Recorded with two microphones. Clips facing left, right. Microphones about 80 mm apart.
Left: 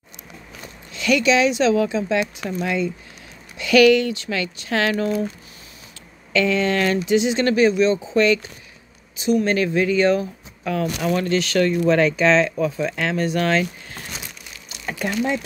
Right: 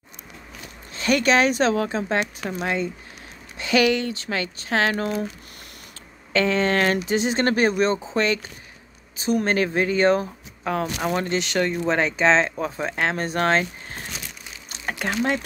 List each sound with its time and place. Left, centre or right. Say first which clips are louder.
0.9 s speech: left 1 dB; right
6.3 s speech: left 1 dB; right